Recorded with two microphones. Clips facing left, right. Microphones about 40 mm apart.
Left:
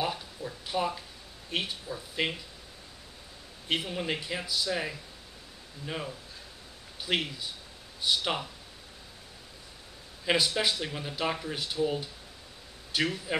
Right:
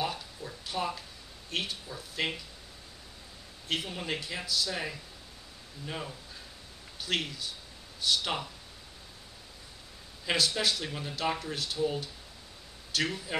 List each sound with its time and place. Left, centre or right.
0.0 s a sound: centre
1.5 s speech: centre
3.6 s speech: centre
7.0 s speech: centre
10.2 s speech: centre